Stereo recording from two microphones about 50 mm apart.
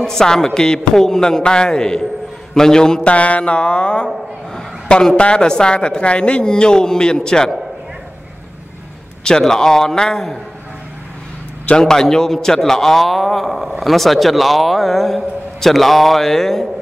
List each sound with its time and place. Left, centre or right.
0.0 s speech: centre
3.1 s speech: left
9.4 s speech: centre
11.8 s a man's voice: centre